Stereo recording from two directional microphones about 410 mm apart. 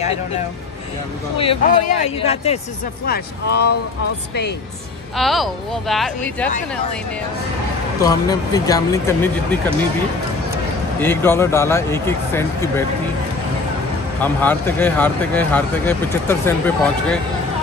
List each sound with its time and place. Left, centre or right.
1.4 s speech: centre
5.1 s speech: centre
8.0 s speech: centre
11.0 s speech: centre
14.2 s speech: centre